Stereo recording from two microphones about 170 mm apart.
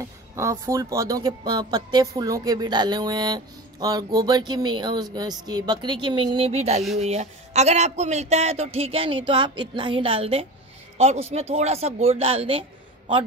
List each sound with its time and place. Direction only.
0.4 s speech: 20° right (ahead or behind); by 12.6 s 35° right (ahead or behind)